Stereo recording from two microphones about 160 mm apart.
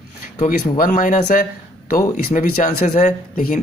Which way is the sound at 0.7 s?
55° left (ahead or behind).